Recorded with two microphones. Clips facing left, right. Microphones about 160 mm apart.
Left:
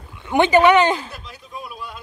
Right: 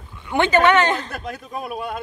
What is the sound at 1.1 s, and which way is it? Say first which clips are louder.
Speech: right 7 dB; 55° right (ahead or behind).